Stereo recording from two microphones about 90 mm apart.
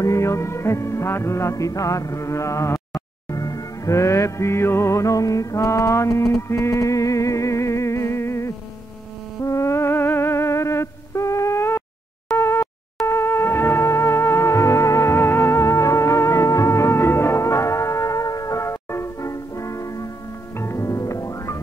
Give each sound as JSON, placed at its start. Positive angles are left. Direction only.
{"t": 0.0, "sound": "music", "side_deg": 35}
{"t": 12.4, "sound": "a sound", "side_deg": 30}
{"t": 13.0, "sound": "music", "side_deg": 30}